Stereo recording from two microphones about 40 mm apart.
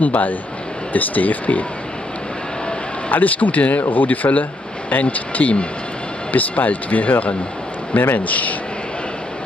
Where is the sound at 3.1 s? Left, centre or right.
Left.